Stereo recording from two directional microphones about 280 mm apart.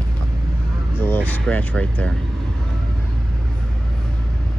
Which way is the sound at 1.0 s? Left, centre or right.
Centre.